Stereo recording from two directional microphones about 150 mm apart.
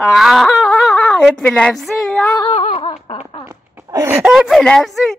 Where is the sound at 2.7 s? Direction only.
35° left (ahead or behind).